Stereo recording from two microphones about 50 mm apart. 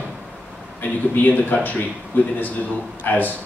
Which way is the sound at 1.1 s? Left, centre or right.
Left.